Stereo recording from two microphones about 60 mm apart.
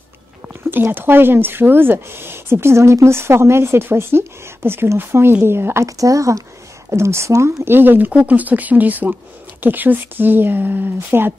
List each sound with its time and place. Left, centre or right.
0.5 s speech: right
5.9 s speech: right
6.9 s speech: right
7.6 s speech: right